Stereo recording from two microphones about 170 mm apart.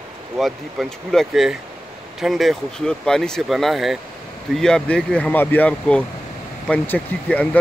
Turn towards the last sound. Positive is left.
turn(degrees=10)  # may be behind; listen again after turning